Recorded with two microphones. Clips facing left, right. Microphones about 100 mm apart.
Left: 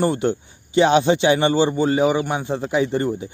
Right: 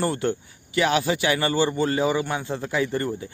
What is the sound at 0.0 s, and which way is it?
Speech, 20° left (ahead or behind).